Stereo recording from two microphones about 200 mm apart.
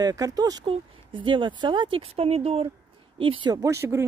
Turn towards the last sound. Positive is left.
turn(degrees=-15)  # may be behind; listen again after turning